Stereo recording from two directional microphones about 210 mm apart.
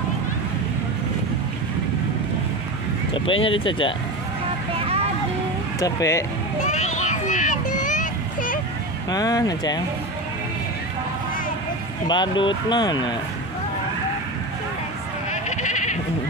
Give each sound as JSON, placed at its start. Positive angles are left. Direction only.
{"t": 3.3, "sound": "speech", "side_deg": 25}
{"t": 4.7, "sound": "vehicle", "side_deg": -30}
{"t": 5.8, "sound": "speech", "side_deg": 15}
{"t": 6.6, "sound": "a sound", "side_deg": 35}
{"t": 9.1, "sound": "speech", "side_deg": 15}
{"t": 12.1, "sound": "speech", "side_deg": 20}
{"t": 15.5, "sound": "goat", "side_deg": 35}